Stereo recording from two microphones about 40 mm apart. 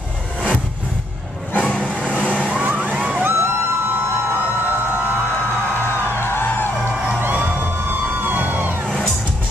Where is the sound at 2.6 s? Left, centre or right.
Right.